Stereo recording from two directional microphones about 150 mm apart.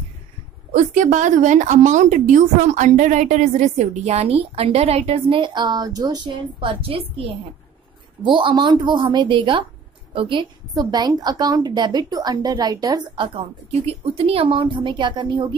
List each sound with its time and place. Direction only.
0.7 s a woman's voice: 55° right (ahead or behind); by 15.4 s 30° right (ahead or behind)